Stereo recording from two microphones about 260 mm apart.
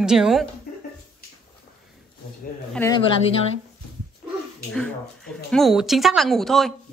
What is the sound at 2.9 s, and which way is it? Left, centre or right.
Speech, centre.